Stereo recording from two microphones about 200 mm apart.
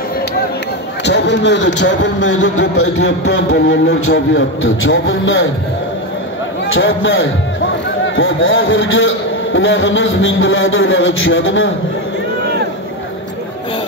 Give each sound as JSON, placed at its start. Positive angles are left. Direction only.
{"t": 1.0, "sound": "speech", "side_deg": 60}
{"t": 2.4, "sound": "a man's voice", "side_deg": 75}
{"t": 6.7, "sound": "a man's voice", "side_deg": 75}